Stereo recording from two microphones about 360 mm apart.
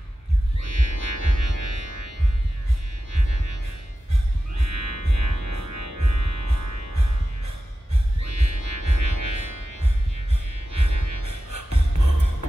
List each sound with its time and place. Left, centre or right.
0.6 s music: right
3.1 s music: right
4.6 s music: right